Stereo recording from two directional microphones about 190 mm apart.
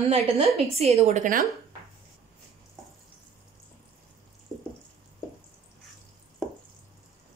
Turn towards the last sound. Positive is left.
turn(degrees=5)  # may be behind; listen again after turning